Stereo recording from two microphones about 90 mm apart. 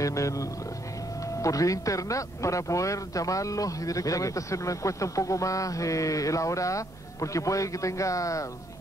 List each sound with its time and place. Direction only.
0.0 s speech: 35° left (ahead or behind)